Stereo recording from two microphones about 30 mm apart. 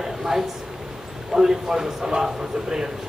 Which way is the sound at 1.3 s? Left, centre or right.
Right.